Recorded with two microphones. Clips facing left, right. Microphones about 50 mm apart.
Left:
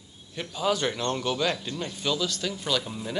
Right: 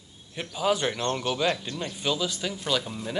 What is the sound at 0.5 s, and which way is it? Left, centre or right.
Speech, centre.